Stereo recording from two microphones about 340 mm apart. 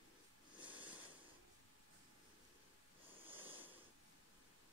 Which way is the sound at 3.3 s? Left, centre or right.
Centre.